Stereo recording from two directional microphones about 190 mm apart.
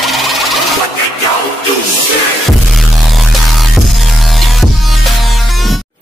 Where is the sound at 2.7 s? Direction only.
Centre (ahead or behind).